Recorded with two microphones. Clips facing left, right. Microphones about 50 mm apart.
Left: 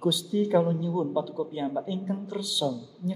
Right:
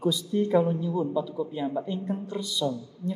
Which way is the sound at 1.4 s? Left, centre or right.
Centre.